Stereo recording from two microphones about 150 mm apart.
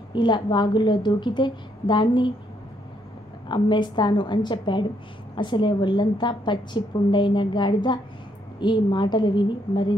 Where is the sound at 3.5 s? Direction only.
30° left (ahead or behind).